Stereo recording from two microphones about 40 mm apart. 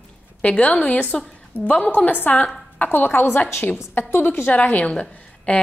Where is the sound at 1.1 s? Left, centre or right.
Centre.